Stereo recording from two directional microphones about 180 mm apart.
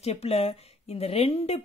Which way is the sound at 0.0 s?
35° left (ahead or behind).